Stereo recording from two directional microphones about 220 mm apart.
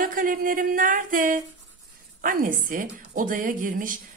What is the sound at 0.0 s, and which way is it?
Speech, 40° right (ahead or behind).